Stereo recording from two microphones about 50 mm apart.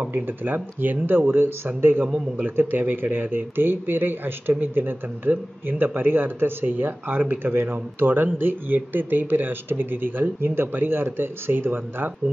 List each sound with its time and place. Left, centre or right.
0.1 s speech: right